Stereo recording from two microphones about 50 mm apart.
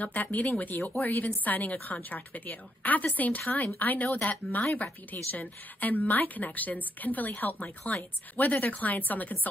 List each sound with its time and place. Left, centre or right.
0.0 s a woman's voice: left